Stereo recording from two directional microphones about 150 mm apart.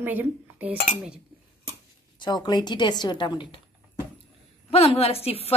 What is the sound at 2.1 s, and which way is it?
A woman's voice, 30° left (ahead or behind).